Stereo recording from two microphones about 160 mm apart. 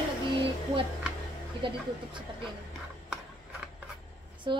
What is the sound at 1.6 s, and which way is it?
Speech, 30° right (ahead or behind).